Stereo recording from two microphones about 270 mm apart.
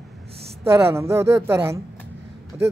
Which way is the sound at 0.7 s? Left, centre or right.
Centre.